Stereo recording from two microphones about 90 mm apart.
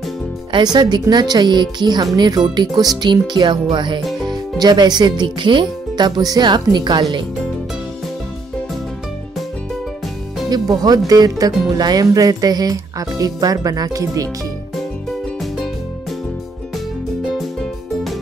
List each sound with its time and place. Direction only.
0.5 s a woman's voice: 55° right (ahead or behind)
10.5 s speech: 50° right (ahead or behind)
17.3 s music: centre (ahead or behind)